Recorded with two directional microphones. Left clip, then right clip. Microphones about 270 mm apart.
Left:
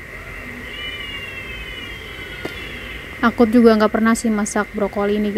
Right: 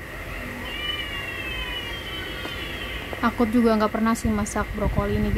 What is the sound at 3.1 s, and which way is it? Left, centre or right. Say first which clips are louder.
Speech: left 8 dB; centre.